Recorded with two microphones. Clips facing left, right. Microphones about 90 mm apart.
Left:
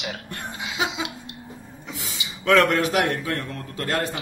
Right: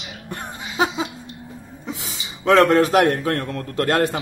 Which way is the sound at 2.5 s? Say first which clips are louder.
Right 4 dB; 35° right (ahead or behind).